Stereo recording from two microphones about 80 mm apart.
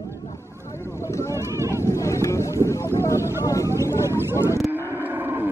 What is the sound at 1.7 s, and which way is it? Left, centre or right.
Vehicle, left.